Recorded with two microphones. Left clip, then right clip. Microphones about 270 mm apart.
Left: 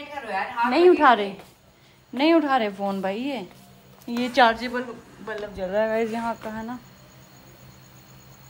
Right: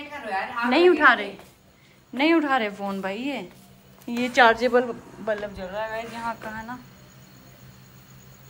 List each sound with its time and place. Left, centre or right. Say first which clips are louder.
0.3 s a woman's voice: even; centre
1.0 s a woman's voice: left 1 dB; centre
5.6 s speech: left 7 dB; left